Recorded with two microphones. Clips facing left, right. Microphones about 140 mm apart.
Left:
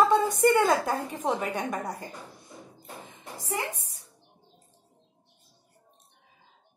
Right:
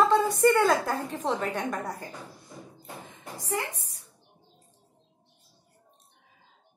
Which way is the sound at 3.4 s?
20° left (ahead or behind).